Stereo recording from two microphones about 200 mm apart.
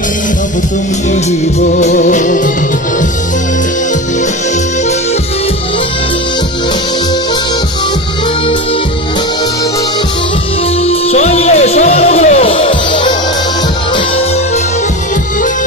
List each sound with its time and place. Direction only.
1.1 s music: 35° left (ahead or behind)
10.8 s music: 30° left (ahead or behind)